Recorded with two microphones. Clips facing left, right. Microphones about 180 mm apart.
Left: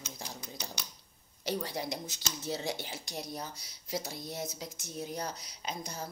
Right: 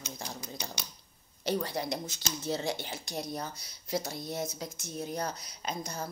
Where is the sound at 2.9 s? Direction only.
50° right (ahead or behind).